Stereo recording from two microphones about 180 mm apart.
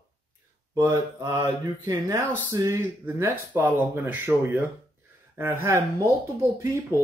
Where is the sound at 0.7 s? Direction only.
20° right (ahead or behind).